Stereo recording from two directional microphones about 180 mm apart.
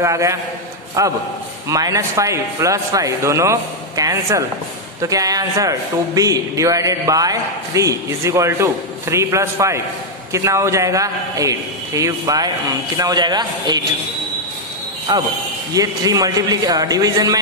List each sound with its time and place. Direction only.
0.0 s a man's voice: 15° right (ahead or behind)
15.1 s a man's voice: 20° right (ahead or behind)